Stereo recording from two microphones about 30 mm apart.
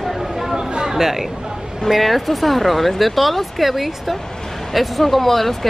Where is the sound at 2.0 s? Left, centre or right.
Centre.